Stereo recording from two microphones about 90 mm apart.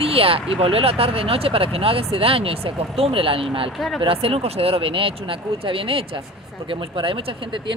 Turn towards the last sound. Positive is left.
turn(degrees=-75)  # may be behind; listen again after turning